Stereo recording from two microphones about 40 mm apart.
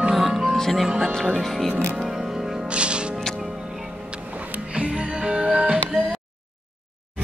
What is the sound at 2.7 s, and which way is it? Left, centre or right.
Music, right.